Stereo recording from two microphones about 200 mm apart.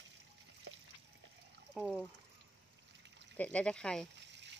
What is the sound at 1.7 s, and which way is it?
Speech, centre (ahead or behind).